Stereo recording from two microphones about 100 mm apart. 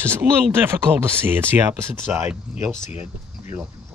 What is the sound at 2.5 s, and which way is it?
Speech, 5° right (ahead or behind).